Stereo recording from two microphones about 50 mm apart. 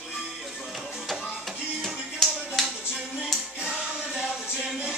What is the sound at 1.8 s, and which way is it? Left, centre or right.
Music, centre.